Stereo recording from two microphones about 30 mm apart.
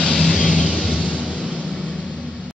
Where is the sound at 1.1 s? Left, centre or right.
Left.